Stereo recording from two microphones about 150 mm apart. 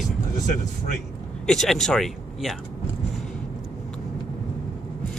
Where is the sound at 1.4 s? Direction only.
5° left (ahead or behind).